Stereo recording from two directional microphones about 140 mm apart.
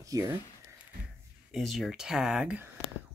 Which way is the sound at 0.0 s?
25° right (ahead or behind).